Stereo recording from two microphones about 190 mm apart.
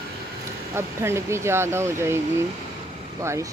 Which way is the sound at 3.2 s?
15° right (ahead or behind).